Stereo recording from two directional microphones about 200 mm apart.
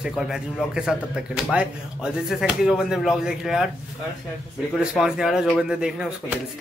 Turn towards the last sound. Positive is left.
turn(degrees=-5)  # may be behind; listen again after turning